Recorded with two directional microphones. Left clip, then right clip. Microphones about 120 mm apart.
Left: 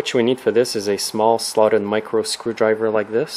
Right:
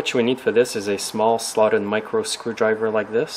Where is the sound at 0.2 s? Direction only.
25° left (ahead or behind).